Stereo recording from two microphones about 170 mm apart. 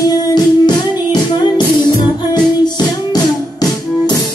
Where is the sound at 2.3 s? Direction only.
25° left (ahead or behind).